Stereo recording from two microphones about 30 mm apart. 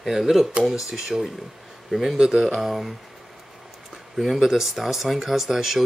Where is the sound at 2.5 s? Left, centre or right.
Centre.